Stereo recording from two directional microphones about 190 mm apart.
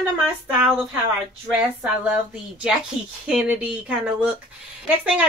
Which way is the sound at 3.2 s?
5° right (ahead or behind).